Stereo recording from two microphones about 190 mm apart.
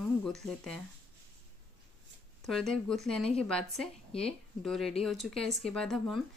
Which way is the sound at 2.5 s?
Centre (ahead or behind).